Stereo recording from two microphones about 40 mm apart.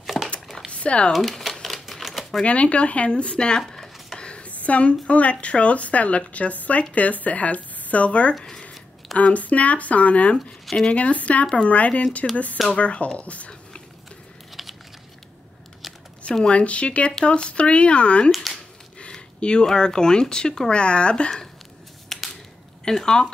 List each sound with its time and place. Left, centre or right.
0.0 s a sound: centre
0.7 s a sound: left
1.1 s typewriter: centre
2.4 s speech: left
8.4 s a sound: centre
9.2 s speech: left
14.6 s typing: centre
15.8 s typing: centre
16.4 s speech: left
18.3 s speech: centre
19.6 s speech: centre
22.1 s a sound: centre
22.8 s speech: centre